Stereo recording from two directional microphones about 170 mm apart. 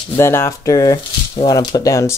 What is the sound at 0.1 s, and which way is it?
Speech, 15° left (ahead or behind).